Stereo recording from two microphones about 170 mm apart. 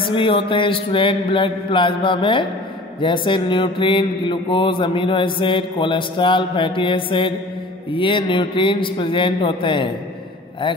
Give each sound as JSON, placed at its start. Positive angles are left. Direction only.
{"t": 0.0, "sound": "mantra", "side_deg": 30}